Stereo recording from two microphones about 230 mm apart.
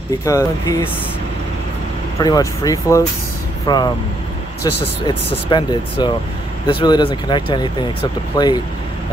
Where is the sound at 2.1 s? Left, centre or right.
Centre.